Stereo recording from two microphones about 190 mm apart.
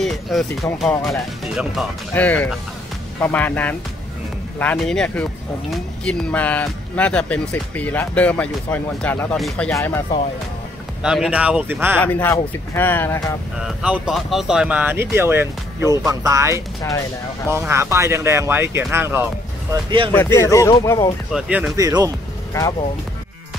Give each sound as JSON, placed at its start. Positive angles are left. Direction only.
{"t": 0.0, "sound": "speech", "side_deg": 0}
{"t": 11.0, "sound": "speech", "side_deg": -5}
{"t": 12.0, "sound": "speech", "side_deg": 10}
{"t": 13.8, "sound": "speech", "side_deg": -5}
{"t": 19.7, "sound": "speech", "side_deg": -25}
{"t": 20.3, "sound": "speech", "side_deg": 15}
{"t": 21.3, "sound": "speech", "side_deg": -5}
{"t": 21.7, "sound": "speech", "side_deg": -20}
{"t": 22.5, "sound": "speech", "side_deg": 20}